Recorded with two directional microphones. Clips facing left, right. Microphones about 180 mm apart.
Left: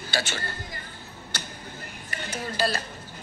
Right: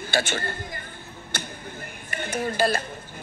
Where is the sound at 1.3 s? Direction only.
55° right (ahead or behind).